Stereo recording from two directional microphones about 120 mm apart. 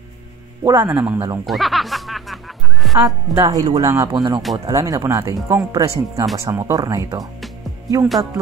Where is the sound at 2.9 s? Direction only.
25° right (ahead or behind).